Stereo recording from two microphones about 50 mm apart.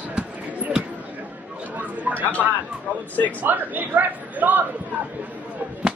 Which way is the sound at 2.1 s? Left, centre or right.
Right.